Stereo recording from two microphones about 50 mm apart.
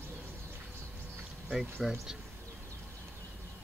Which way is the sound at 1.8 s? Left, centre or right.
Centre.